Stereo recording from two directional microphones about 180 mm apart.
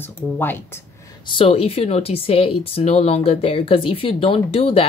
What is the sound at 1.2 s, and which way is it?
Speech, 30° left (ahead or behind).